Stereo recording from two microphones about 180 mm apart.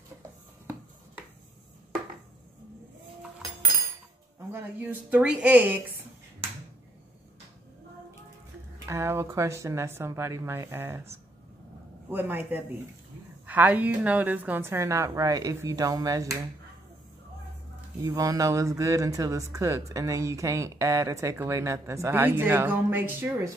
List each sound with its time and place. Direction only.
4.5 s speech: 10° right (ahead or behind)
8.8 s speech: 15° right (ahead or behind)
18.0 s speech: 20° right (ahead or behind)